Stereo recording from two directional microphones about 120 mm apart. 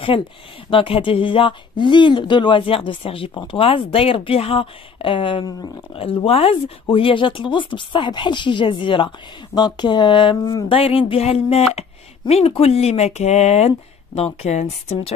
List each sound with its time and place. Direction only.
0.1 s speech: 45° left (ahead or behind)
10.8 s speech: 50° left (ahead or behind); by 15.1 s 70° left (ahead or behind)